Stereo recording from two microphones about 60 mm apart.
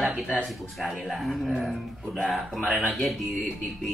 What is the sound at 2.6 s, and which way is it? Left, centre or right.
Speech, centre.